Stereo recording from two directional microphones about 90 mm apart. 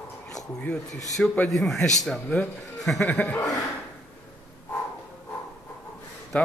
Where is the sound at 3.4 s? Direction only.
40° left (ahead or behind).